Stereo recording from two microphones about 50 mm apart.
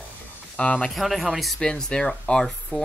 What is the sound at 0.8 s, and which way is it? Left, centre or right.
Speech, centre.